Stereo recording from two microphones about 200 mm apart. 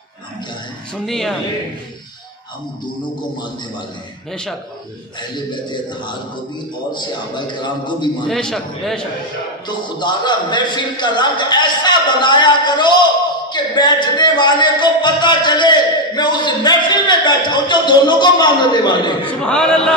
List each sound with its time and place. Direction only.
0.9 s a man's voice: centre (ahead or behind)
4.3 s a man's voice: centre (ahead or behind)
5.3 s speech: 20° left (ahead or behind)
8.3 s a man's voice: 5° left (ahead or behind)
9.7 s speech: 20° left (ahead or behind)
19.4 s a man's voice: 5° left (ahead or behind)